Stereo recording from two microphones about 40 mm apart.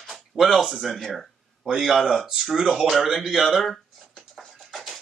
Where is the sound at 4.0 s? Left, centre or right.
Centre.